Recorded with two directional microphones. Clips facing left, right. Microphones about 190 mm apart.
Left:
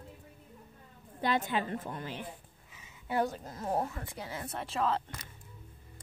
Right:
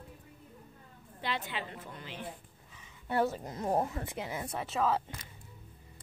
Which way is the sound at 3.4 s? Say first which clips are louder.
Right 2 dB; 20° right (ahead or behind).